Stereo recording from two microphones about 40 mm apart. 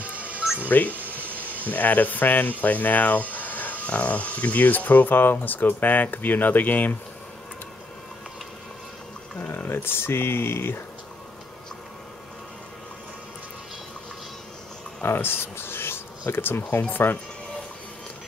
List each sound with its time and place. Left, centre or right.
0.1 s music: right
0.7 s speech: left
1.0 s a sound: right
1.7 s speech: left
9.7 s speech: left
15.0 s speech: left
16.9 s speech: left